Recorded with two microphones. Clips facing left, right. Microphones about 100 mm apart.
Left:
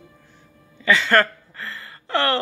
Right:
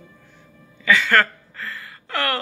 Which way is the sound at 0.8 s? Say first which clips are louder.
Even; 25° left (ahead or behind).